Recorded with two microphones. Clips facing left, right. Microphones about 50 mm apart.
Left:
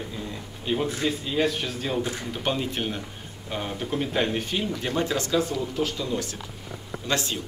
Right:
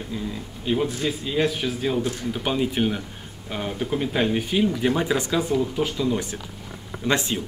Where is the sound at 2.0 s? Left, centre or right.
Left.